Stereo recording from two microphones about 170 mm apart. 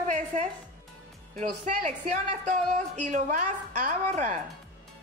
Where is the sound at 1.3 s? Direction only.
45° right (ahead or behind).